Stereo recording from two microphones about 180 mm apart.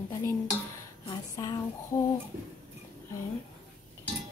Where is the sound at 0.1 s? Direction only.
15° left (ahead or behind).